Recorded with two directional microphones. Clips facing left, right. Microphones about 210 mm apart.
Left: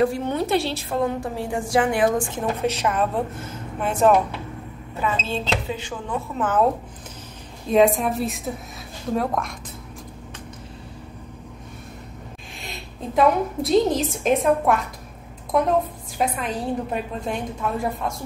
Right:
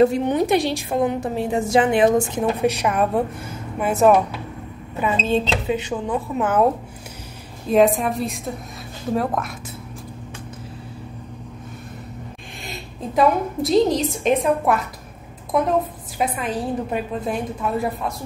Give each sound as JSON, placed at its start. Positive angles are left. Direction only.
{"t": 0.0, "sound": "a woman's voice", "side_deg": -20}
{"t": 5.0, "sound": "a woman's voice", "side_deg": -20}
{"t": 7.6, "sound": "a woman's voice", "side_deg": 0}
{"t": 12.6, "sound": "a woman's voice", "side_deg": 0}